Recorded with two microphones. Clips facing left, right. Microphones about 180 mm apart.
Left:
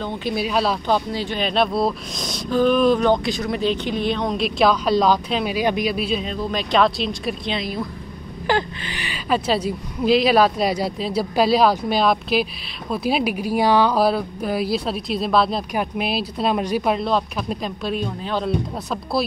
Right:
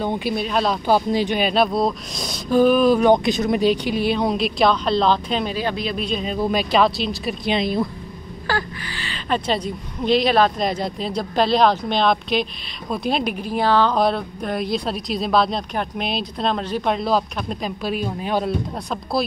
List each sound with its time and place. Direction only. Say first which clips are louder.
0.3 s speech: left 3 dB; 5° left (ahead or behind)
0.8 s speech: right 3 dB; 10° right (ahead or behind)
1.5 s speech: right 1 dB; centre (ahead or behind)
3.1 s speech: right 3 dB; 20° right (ahead or behind)
3.6 s speech: even; 10° right (ahead or behind)
6.3 s speech: right 3 dB; 5° right (ahead or behind)
8.5 s a woman's voice: left 4 dB; 20° left (ahead or behind); by 18.5 s 10° right (ahead or behind)